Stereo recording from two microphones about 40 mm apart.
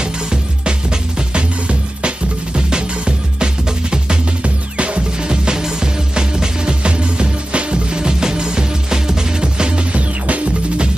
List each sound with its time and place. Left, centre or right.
0.0 s music: right
4.7 s music: right
10.2 s music: right